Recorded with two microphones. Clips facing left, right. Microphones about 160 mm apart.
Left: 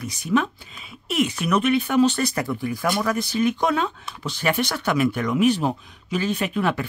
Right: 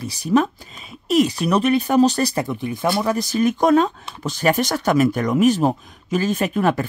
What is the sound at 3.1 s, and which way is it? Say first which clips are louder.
Speech: right 3 dB; 40° right (ahead or behind).